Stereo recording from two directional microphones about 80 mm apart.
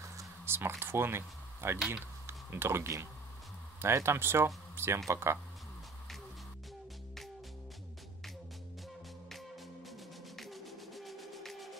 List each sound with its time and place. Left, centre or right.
0.5 s speech: right
9.3 s music: centre